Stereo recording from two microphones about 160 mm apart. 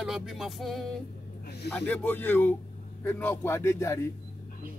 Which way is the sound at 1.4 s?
90° left.